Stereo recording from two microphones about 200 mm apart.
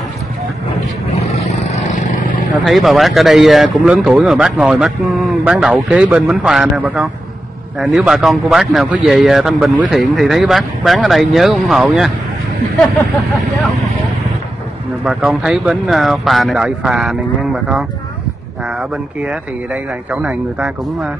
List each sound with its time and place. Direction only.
0.7 s vehicle: 30° left (ahead or behind)
2.6 s speech: centre (ahead or behind)
15.0 s speech: 5° right (ahead or behind)